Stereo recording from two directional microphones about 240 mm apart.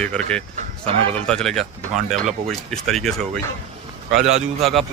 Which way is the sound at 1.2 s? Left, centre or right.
Centre.